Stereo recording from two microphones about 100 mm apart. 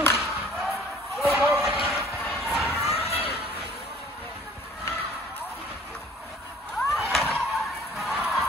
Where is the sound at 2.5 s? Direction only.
Centre (ahead or behind).